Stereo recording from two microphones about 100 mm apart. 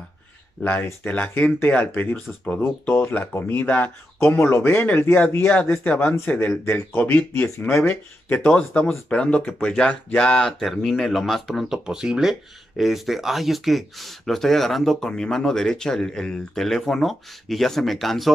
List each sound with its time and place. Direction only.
0.7 s speech: 20° left (ahead or behind); by 18.3 s centre (ahead or behind)